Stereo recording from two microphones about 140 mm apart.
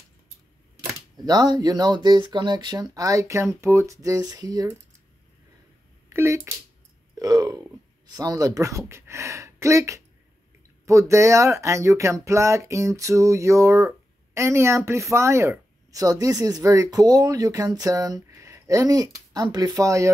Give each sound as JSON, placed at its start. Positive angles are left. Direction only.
{"t": 0.7, "sound": "speech", "side_deg": -30}
{"t": 6.0, "sound": "speech", "side_deg": -20}